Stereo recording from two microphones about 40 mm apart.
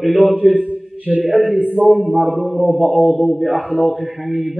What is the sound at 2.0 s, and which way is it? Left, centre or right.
A man's voice, centre.